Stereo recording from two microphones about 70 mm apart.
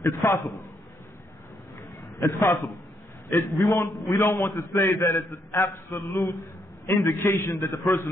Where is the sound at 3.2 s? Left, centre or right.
Left.